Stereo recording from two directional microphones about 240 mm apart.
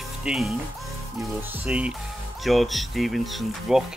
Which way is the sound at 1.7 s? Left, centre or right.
Centre.